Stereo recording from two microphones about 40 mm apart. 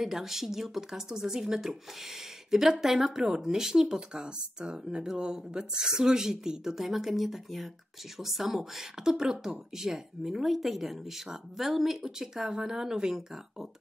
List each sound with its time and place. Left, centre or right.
0.0 s speech: centre